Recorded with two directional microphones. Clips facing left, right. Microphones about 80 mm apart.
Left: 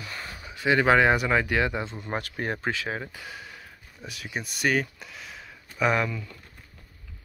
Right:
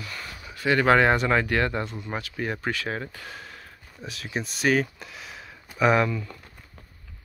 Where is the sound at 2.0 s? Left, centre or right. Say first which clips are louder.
Even; left.